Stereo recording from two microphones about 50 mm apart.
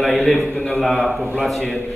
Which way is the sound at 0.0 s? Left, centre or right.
Centre.